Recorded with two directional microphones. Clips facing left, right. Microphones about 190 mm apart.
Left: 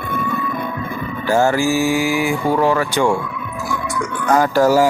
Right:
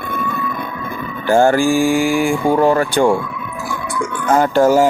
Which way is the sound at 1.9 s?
Centre (ahead or behind).